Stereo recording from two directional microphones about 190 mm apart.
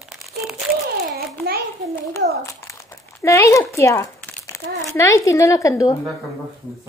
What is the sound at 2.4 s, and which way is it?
Speech, 15° left (ahead or behind).